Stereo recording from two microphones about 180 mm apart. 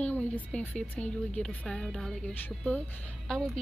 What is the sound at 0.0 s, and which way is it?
A woman's voice, 10° left (ahead or behind).